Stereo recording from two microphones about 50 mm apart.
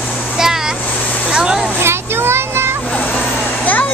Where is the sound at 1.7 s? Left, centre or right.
Right.